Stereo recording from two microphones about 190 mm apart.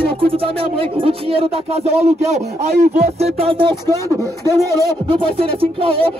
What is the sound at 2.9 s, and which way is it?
Music, 35° right (ahead or behind).